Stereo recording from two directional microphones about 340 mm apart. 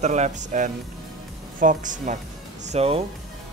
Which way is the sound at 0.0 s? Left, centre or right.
Centre.